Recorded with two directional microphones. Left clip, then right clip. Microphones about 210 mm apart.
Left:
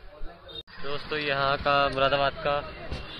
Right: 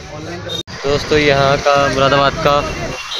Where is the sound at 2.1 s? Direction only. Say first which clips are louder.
Right 13 dB; centre (ahead or behind).